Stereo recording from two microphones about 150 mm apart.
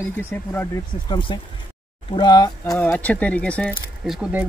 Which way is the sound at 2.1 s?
25° left (ahead or behind).